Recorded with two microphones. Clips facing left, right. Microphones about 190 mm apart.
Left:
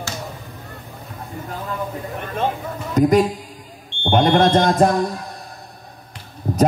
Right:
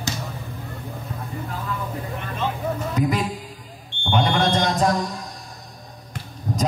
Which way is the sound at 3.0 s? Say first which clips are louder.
Left 11 dB; 45° left (ahead or behind).